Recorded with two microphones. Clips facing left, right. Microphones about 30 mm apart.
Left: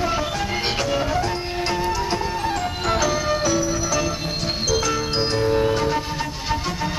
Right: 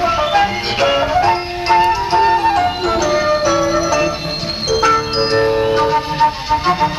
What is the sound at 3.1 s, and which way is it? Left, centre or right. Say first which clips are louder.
Music: right 7 dB; right.